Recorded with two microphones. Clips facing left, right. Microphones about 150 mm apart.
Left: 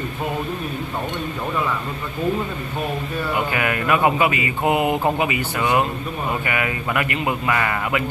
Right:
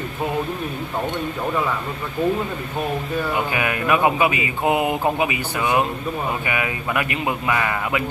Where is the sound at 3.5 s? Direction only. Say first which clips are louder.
Even; 15° right (ahead or behind).